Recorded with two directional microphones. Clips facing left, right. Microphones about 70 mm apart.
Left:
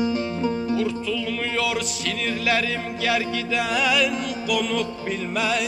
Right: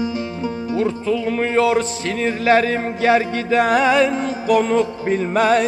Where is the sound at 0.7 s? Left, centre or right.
Right.